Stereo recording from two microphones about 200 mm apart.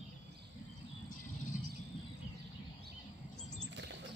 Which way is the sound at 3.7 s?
65° right (ahead or behind).